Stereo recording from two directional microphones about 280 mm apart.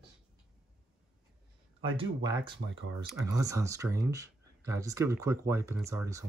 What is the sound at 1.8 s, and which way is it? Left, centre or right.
Speech, centre.